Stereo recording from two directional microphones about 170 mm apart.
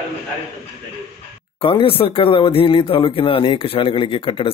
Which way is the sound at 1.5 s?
30° left (ahead or behind).